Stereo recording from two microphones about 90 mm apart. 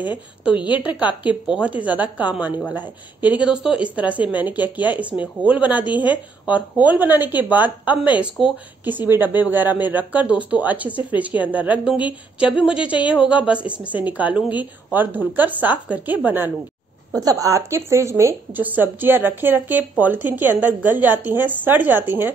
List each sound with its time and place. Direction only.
0.0 s speech: 15° right (ahead or behind)
17.2 s speech: 40° right (ahead or behind)
18.5 s speech: 20° right (ahead or behind)